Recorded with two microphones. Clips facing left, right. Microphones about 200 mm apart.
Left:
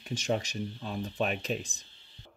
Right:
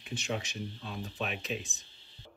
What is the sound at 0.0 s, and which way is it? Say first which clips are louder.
Speech: left 5 dB; 40° left (ahead or behind).